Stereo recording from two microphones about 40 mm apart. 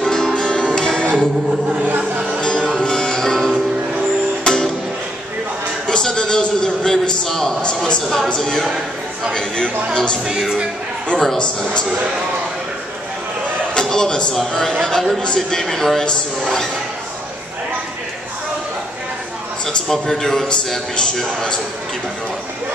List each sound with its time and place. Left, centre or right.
0.0 s music: centre
2.4 s music: centre
5.9 s a sound: centre
8.4 s a man's voice: centre
10.2 s speech: centre
11.3 s a man's voice: left
13.7 s a sound: centre
14.3 s a man's voice: centre
19.6 s a man's voice: centre